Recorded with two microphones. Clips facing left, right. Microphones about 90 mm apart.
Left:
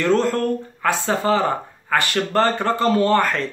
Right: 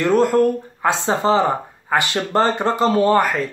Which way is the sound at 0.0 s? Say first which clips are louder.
Right 4 dB; 15° right (ahead or behind).